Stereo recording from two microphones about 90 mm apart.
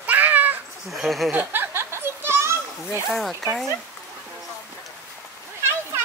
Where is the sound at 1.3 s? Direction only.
20° right (ahead or behind).